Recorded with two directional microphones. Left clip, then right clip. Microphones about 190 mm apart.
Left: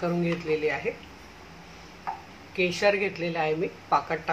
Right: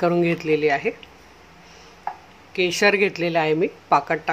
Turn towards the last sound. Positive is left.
turn(degrees=-50)  # may be behind; listen again after turning